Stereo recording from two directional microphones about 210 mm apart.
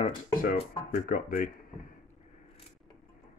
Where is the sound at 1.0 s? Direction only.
40° left (ahead or behind).